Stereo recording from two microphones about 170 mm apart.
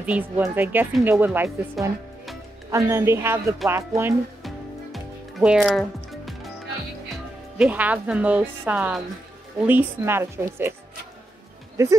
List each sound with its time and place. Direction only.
0.0 s speech: 10° right (ahead or behind)
4.9 s music: 5° right (ahead or behind)
7.5 s speech: 5° right (ahead or behind)
11.7 s speech: 20° right (ahead or behind)